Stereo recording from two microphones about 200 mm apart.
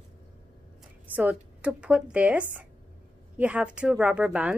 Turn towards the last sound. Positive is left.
turn(degrees=-5)  # may be behind; listen again after turning